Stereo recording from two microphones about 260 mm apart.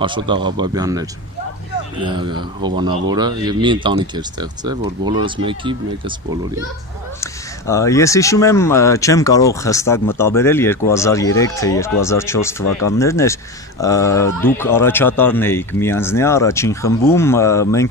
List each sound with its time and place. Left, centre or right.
0.0 s speech: centre
7.2 s speech: centre